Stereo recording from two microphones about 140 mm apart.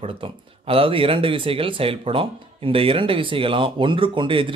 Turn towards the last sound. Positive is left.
turn(degrees=-40)  # may be behind; listen again after turning